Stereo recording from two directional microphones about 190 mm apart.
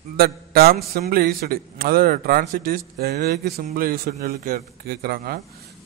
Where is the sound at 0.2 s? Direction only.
55° right (ahead or behind).